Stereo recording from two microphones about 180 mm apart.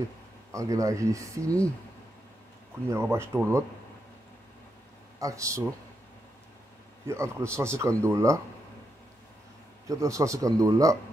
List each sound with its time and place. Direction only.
0.5 s speech: 15° right (ahead or behind)
2.9 s speech: 15° right (ahead or behind)
5.2 s speech: 15° right (ahead or behind)
7.1 s speech: 15° right (ahead or behind)
9.8 s speech: 15° right (ahead or behind)